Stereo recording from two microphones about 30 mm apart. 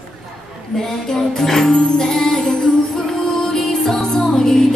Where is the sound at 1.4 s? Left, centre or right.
Centre.